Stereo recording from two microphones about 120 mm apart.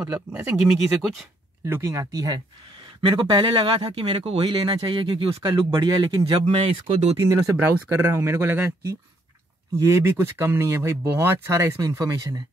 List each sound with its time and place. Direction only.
0.7 s speech: 5° right (ahead or behind)
1.7 s speech: 25° right (ahead or behind)
3.0 s speech: 40° right (ahead or behind)
7.2 s speech: 25° right (ahead or behind)